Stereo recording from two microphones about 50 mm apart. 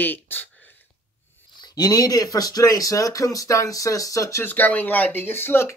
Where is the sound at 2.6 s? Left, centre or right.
Left.